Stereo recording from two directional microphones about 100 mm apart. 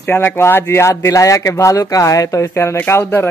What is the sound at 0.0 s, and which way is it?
Speech, 20° left (ahead or behind).